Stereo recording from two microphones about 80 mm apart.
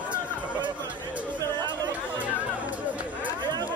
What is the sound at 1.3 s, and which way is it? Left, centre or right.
Chatter, right.